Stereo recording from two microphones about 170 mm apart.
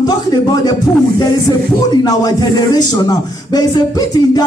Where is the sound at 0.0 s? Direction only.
25° left (ahead or behind).